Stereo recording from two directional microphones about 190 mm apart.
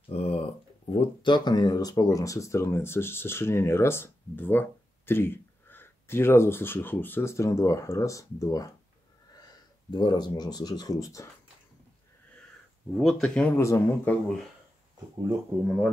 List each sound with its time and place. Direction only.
0.1 s speech: 30° left (ahead or behind)
12.9 s speech: centre (ahead or behind)